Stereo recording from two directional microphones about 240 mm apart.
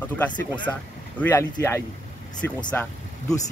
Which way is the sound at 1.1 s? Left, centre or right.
Centre.